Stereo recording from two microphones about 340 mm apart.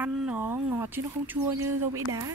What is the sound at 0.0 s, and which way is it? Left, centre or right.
Speech, centre.